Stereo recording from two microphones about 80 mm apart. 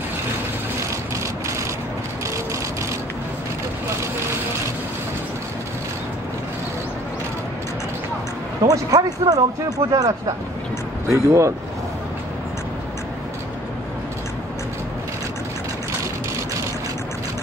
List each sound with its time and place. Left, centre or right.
8.6 s speech: right
11.1 s speech: right